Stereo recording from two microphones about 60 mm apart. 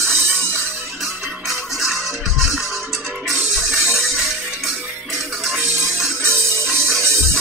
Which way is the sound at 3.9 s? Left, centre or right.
Centre.